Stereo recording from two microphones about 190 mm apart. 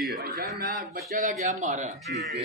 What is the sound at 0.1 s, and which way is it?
A man's voice, 55° right (ahead or behind).